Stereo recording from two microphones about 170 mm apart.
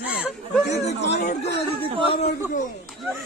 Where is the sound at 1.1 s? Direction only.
40° left (ahead or behind).